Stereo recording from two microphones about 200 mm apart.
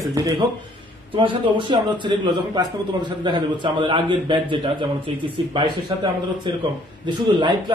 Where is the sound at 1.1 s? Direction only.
25° right (ahead or behind).